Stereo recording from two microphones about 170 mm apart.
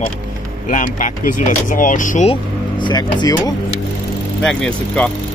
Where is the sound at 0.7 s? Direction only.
50° left (ahead or behind).